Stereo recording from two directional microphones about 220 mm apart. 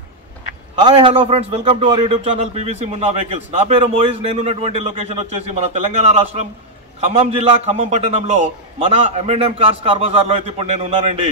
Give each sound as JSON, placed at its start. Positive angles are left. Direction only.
{"t": 0.7, "sound": "a man's voice", "side_deg": -20}